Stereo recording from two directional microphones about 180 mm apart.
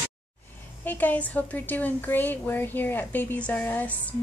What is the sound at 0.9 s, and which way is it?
A woman's voice, 10° left (ahead or behind).